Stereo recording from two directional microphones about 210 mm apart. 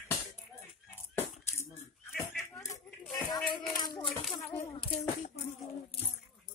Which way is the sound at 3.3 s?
20° left (ahead or behind).